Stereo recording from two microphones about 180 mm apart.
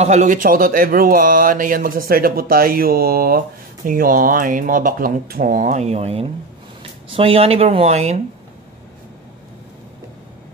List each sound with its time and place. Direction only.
0.0 s speech: 40° right (ahead or behind)